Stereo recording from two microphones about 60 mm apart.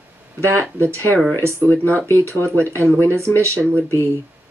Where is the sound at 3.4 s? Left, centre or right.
Right.